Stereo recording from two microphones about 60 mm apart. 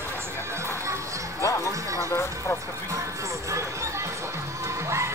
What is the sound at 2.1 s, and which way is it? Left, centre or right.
Vehicle, left.